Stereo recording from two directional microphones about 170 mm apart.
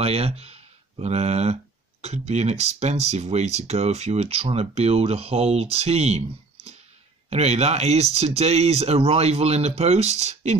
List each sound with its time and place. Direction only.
0.0 s speech: 35° right (ahead or behind)